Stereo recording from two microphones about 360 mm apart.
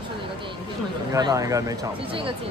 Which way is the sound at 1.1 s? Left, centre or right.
Centre.